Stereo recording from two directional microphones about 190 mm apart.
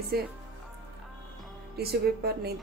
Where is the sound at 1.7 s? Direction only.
55° right (ahead or behind).